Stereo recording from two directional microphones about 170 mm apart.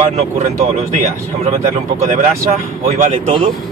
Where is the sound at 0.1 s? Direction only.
40° right (ahead or behind).